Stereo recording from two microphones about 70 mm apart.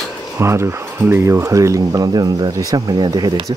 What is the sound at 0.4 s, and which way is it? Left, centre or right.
Speech, right.